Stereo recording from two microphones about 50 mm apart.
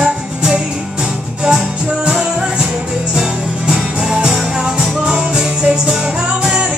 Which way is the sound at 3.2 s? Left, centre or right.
Centre.